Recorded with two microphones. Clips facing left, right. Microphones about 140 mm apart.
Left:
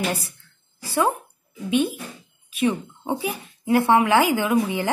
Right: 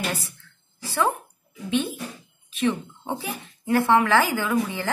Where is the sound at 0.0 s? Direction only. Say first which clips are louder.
Left 3 dB; 10° left (ahead or behind).